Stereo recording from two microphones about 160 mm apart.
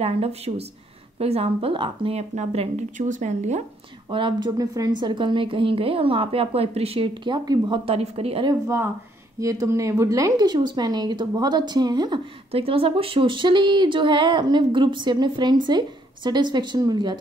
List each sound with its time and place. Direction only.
0.0 s a woman's voice: 40° right (ahead or behind)
3.0 s speech: 50° right (ahead or behind)
4.1 s a woman's voice: 30° right (ahead or behind)
8.5 s speech: 20° right (ahead or behind)
12.4 s speech: 35° right (ahead or behind)